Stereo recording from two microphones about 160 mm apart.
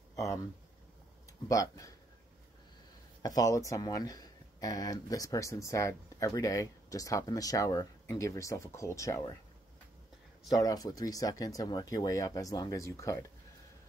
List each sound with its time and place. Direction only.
0.1 s a sound: 20° left (ahead or behind)
1.5 s speech: 20° left (ahead or behind)
3.2 s speech: 25° left (ahead or behind)
10.5 s speech: 25° left (ahead or behind)